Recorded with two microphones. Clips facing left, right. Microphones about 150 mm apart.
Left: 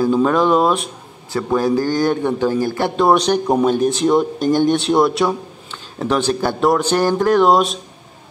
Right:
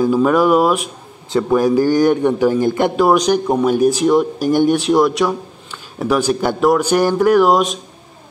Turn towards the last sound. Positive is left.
turn(degrees=0)  # may be behind; listen again after turning